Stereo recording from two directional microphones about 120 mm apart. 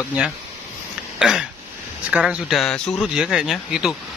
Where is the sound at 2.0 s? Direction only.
10° right (ahead or behind).